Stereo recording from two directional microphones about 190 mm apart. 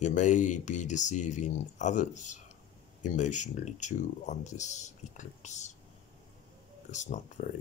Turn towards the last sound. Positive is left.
turn(degrees=40)  # may be behind; listen again after turning